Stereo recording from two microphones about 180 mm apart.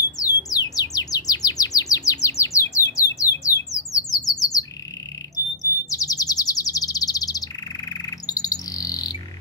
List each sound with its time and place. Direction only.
0.2 s chirp: 20° left (ahead or behind)
2.2 s bird: 15° left (ahead or behind)
5.3 s chirp: 20° left (ahead or behind)
8.3 s bird: 20° left (ahead or behind)